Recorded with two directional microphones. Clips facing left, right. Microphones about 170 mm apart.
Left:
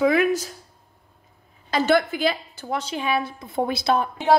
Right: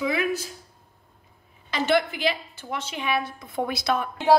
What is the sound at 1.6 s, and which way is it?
A woman's voice, 40° left (ahead or behind).